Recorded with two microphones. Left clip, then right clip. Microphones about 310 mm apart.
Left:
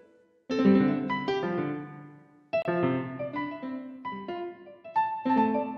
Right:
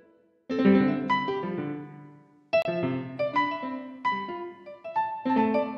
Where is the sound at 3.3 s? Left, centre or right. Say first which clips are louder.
Right 8 dB; right.